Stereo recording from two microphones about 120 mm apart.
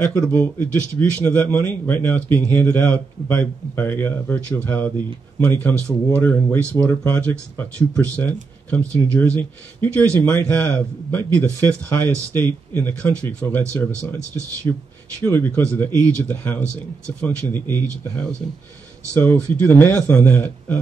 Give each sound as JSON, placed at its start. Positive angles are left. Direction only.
{"t": 0.0, "sound": "speech", "side_deg": 10}
{"t": 19.1, "sound": "speech", "side_deg": 15}